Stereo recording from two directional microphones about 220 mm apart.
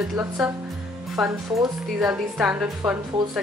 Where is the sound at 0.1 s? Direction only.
5° right (ahead or behind).